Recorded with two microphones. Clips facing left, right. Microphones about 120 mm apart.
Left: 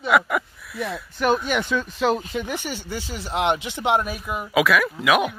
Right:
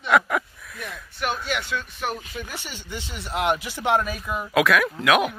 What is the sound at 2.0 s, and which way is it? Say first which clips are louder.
Speech: left 11 dB; 90° left.